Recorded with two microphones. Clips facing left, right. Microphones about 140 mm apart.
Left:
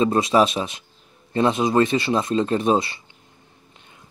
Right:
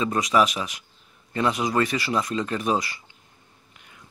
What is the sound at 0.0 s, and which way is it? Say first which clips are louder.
Speech: left 4 dB; 30° left (ahead or behind).